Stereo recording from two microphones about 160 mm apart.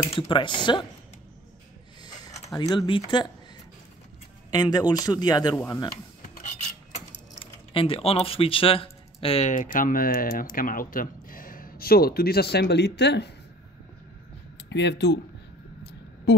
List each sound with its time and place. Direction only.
0.1 s a man's voice: 30° left (ahead or behind)
2.5 s a man's voice: 25° left (ahead or behind)
4.5 s a man's voice: 25° left (ahead or behind)
7.7 s speech: 35° left (ahead or behind)
9.5 s speech: 55° left (ahead or behind); by 13.3 s 90° left
14.7 s speech: 90° left
15.8 s a sound: 90° left